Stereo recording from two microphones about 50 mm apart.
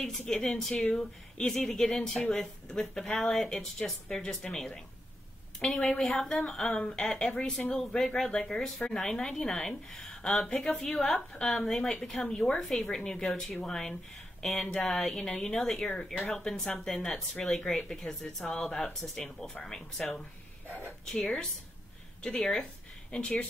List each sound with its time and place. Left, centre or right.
0.3 s a woman's voice: centre
15.9 s a woman's voice: centre
22.2 s a woman's voice: centre